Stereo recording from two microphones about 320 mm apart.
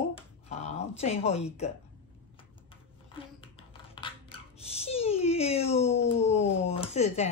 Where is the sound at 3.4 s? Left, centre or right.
Centre.